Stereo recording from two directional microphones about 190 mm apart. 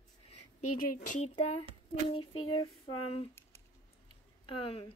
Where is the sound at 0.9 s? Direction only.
45° left (ahead or behind).